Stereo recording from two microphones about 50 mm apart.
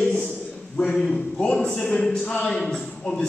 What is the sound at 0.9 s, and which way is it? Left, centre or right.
Speech, centre.